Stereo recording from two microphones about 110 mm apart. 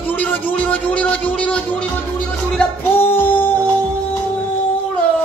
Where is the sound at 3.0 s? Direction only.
20° left (ahead or behind).